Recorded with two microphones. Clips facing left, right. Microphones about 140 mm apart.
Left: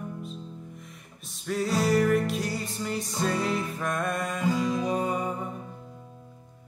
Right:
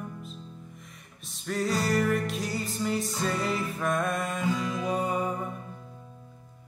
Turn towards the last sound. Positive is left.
turn(degrees=0)  # may be behind; listen again after turning